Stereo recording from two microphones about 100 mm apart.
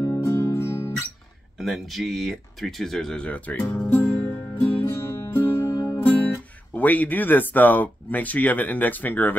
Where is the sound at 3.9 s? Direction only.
20° left (ahead or behind).